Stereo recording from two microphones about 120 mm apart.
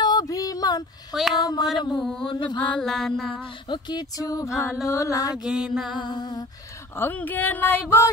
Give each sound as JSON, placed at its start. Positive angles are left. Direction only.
{"t": 0.0, "sound": "a sound", "side_deg": 35}
{"t": 1.1, "sound": "mantra", "side_deg": 0}
{"t": 1.4, "sound": "mantra", "side_deg": 35}
{"t": 2.0, "sound": "mantra", "side_deg": 5}
{"t": 2.2, "sound": "mantra", "side_deg": 40}
{"t": 2.8, "sound": "mantra", "side_deg": 5}
{"t": 3.6, "sound": "speech", "side_deg": 35}
{"t": 5.3, "sound": "mantra", "side_deg": -5}
{"t": 5.9, "sound": "mantra", "side_deg": 40}
{"t": 7.0, "sound": "speech", "side_deg": 15}